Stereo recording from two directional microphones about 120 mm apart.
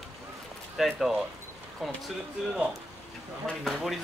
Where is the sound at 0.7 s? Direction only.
Centre (ahead or behind).